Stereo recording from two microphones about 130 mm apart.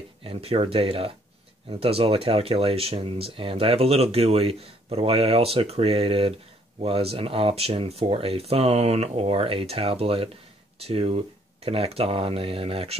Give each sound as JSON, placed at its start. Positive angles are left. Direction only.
{"t": 0.2, "sound": "speech", "side_deg": -45}